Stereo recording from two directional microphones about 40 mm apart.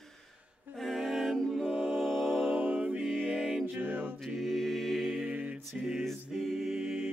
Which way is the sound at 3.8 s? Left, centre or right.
Right.